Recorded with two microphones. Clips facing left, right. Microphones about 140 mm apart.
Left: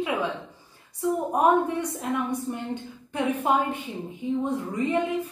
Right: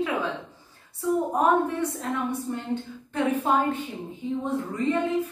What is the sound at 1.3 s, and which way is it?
A woman's voice, 15° left (ahead or behind).